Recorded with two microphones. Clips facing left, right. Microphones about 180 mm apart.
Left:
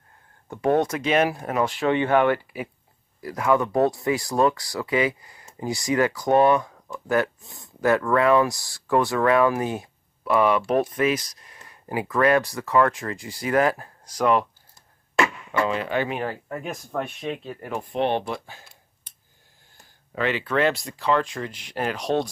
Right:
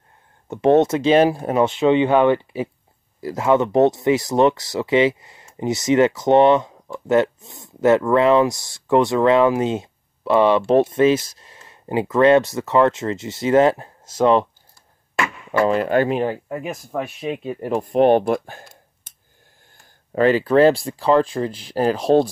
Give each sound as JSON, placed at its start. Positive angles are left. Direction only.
{"t": 0.5, "sound": "speech", "side_deg": -25}
{"t": 15.6, "sound": "speech", "side_deg": -45}
{"t": 16.4, "sound": "speech", "side_deg": -5}
{"t": 17.6, "sound": "speech", "side_deg": -35}
{"t": 20.2, "sound": "speech", "side_deg": -40}